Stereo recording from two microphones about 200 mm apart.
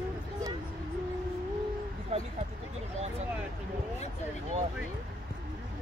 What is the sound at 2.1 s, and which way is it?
Speech, 30° right (ahead or behind).